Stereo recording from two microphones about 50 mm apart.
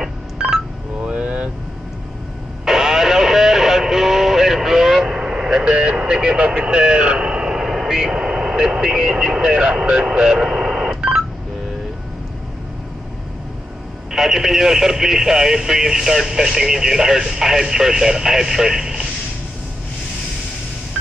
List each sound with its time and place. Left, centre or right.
0.4 s telephone dialing: centre
1.0 s vehicle: right
2.6 s radio: centre
6.0 s vehicle: centre
14.1 s speech: centre